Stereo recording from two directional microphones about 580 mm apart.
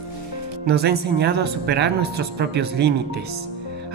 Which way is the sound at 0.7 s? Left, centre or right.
Centre.